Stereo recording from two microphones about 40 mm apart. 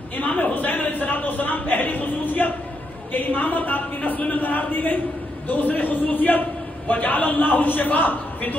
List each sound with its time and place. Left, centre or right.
0.2 s speech: left